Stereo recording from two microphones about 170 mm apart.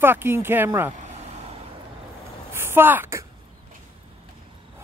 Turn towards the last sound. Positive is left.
turn(degrees=-15)  # may be behind; listen again after turning